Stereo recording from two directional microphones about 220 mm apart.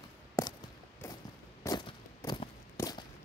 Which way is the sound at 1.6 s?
20° left (ahead or behind).